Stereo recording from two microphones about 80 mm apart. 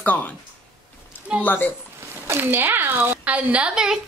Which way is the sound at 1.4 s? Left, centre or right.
Left.